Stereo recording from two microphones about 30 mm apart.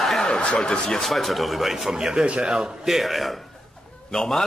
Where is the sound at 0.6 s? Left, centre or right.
Left.